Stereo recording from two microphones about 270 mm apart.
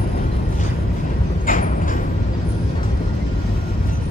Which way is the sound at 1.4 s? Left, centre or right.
Left.